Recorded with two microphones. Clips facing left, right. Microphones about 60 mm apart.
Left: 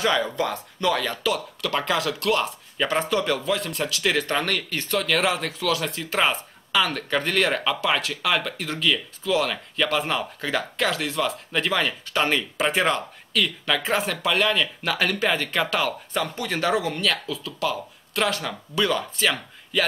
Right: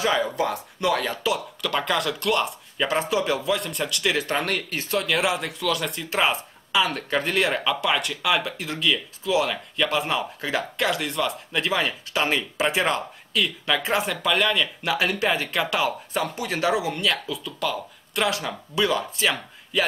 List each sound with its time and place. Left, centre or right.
0.0 s speech: centre
1.6 s speech: centre
3.4 s speech: centre
4.1 s speech: centre
4.9 s speech: centre
6.8 s speech: centre
7.6 s speech: centre
11.7 s speech: centre
14.9 s speech: centre
18.5 s speech: centre